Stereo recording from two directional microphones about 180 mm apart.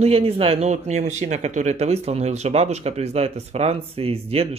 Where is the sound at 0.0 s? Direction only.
35° right (ahead or behind).